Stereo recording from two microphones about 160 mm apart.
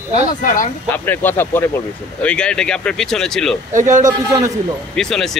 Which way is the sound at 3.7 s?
50° right (ahead or behind).